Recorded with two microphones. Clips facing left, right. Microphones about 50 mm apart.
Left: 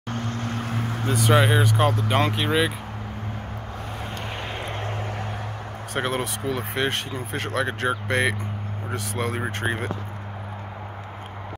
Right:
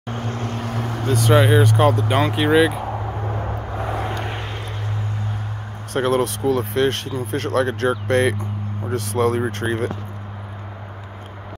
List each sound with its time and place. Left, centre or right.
0.1 s vehicle: right
1.2 s speech: centre
5.9 s speech: centre